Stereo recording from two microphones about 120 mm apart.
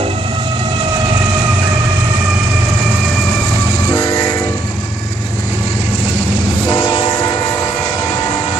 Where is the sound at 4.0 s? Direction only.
30° left (ahead or behind).